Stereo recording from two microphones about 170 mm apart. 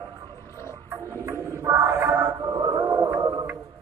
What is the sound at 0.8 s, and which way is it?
Mantra, 15° right (ahead or behind).